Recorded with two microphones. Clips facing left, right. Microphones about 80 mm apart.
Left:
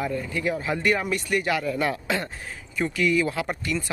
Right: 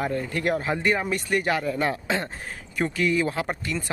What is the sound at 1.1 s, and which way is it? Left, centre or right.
A man's voice, right.